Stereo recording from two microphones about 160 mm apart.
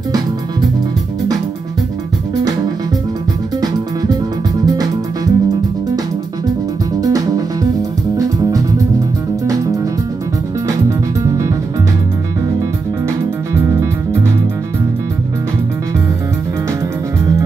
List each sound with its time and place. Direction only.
3.6 s music: 25° right (ahead or behind)
7.0 s music: 20° right (ahead or behind)
10.9 s music: 20° right (ahead or behind)
13.7 s music: 20° right (ahead or behind)